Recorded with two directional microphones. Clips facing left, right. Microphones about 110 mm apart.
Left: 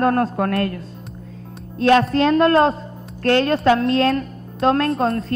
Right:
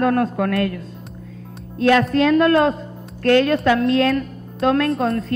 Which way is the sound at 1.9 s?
30° left (ahead or behind).